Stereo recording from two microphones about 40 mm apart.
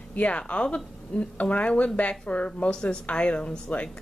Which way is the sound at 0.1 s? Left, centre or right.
Left.